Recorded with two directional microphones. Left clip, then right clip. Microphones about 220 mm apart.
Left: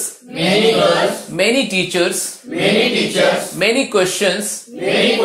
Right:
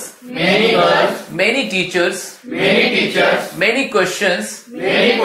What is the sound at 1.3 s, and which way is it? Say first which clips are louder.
Speech: left 1 dB; 45° left (ahead or behind).